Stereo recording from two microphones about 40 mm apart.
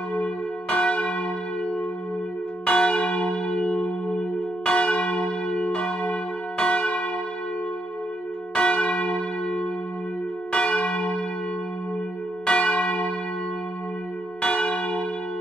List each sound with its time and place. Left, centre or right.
0.1 s church bell: left
2.6 s church bell: left
3.3 s church bell: centre
8.5 s church bell: left
12.4 s church bell: left
14.4 s church bell: left